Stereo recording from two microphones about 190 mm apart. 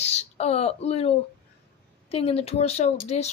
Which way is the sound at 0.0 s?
35° left (ahead or behind).